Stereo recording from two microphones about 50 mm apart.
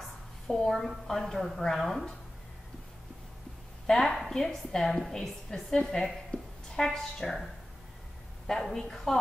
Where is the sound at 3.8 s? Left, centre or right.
Centre.